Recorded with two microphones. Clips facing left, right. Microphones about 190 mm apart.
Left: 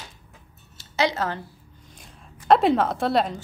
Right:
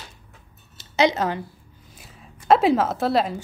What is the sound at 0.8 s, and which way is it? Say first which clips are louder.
Speech: right 4 dB; 20° right (ahead or behind).